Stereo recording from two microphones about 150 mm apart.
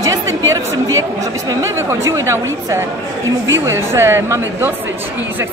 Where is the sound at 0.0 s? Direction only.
20° right (ahead or behind).